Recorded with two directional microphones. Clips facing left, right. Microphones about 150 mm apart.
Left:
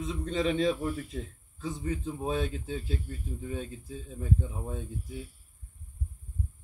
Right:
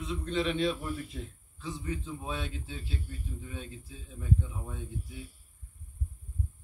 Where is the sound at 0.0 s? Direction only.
40° left (ahead or behind).